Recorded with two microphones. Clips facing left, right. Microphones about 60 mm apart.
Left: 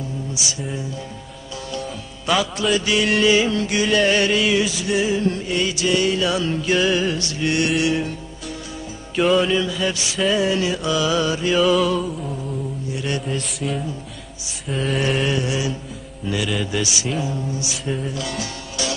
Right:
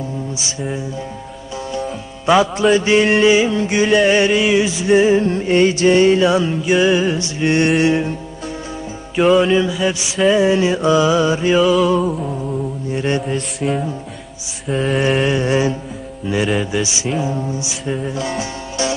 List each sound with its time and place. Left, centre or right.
1.7 s music: right
9.2 s music: centre
9.6 s music: centre
11.6 s music: centre
12.9 s music: right
13.6 s mantra: right
14.7 s music: centre
15.4 s mantra: right
16.3 s music: right